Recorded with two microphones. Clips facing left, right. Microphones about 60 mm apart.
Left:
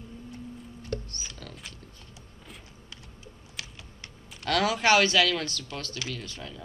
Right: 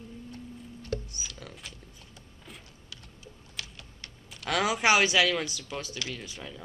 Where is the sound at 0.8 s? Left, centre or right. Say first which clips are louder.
Even; centre.